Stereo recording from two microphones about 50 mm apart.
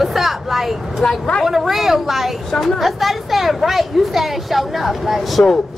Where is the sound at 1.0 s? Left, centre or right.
Centre.